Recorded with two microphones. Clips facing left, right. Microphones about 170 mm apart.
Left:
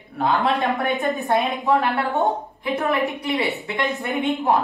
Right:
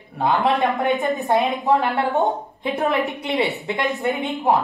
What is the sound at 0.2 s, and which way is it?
A woman's voice, 20° right (ahead or behind).